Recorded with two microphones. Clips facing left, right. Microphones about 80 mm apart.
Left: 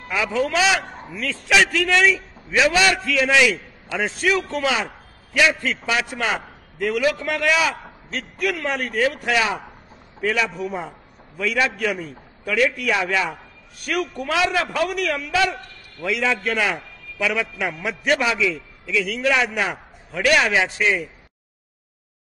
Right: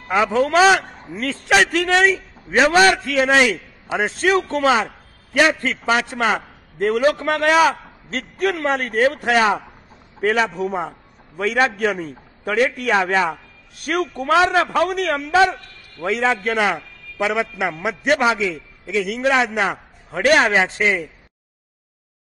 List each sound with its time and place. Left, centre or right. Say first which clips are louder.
0.1 s a man's voice: right 5 dB; right
3.9 s a man's voice: right 3 dB; right